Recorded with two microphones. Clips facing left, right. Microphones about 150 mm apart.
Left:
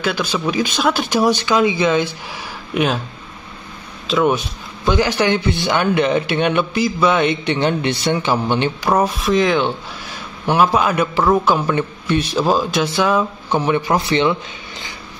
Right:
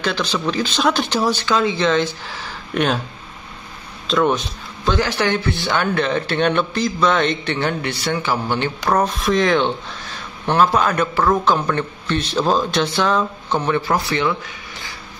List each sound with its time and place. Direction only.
0.0 s speech: 10° left (ahead or behind)
4.1 s speech: 5° left (ahead or behind)
8.8 s speech: 10° left (ahead or behind)